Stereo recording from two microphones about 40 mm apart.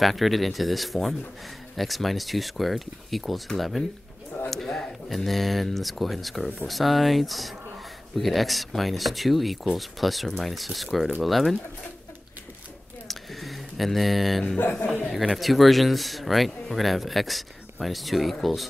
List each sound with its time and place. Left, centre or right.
0.0 s speech: centre
13.1 s a sound: centre
14.6 s a man's voice: left
15.3 s speech: centre